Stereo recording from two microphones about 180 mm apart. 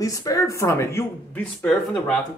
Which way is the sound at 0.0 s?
20° left (ahead or behind).